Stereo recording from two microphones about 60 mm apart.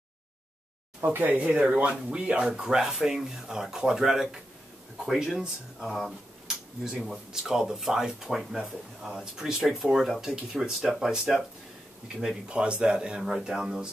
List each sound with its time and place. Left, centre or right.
1.0 s speech: right
1.7 s speech: centre
12.4 s speech: centre